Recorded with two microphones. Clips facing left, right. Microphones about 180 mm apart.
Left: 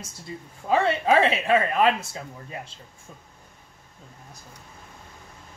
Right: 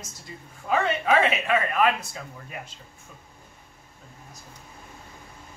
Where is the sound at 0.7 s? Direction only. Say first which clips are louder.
Left 2 dB; 30° left (ahead or behind).